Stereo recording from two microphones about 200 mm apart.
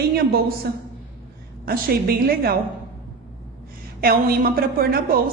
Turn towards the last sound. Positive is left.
turn(degrees=-50)  # may be behind; listen again after turning